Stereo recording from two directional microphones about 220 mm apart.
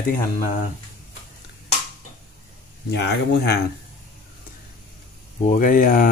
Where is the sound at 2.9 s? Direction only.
50° left (ahead or behind).